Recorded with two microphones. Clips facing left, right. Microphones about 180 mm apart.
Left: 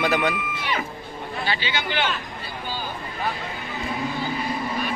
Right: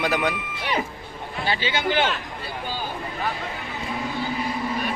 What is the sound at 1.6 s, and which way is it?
Speech, 45° right (ahead or behind).